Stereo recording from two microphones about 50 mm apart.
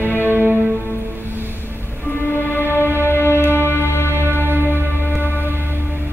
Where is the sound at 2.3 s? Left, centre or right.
Left.